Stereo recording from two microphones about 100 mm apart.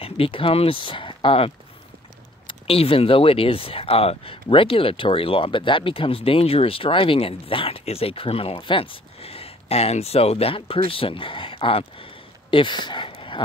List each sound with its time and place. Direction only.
0.0 s speech: 65° left (ahead or behind)